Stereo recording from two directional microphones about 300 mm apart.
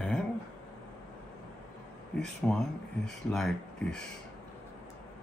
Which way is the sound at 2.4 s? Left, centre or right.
Centre.